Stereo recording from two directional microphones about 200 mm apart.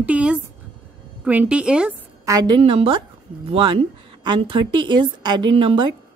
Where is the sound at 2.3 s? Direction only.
20° right (ahead or behind).